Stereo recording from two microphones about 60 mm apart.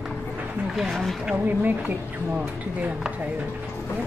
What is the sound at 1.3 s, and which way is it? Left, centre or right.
A woman's voice, right.